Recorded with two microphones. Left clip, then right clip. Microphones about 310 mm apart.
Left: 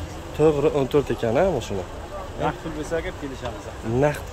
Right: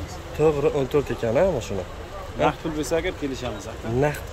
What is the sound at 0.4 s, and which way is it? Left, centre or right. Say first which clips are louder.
Speech: left 1 dB; centre.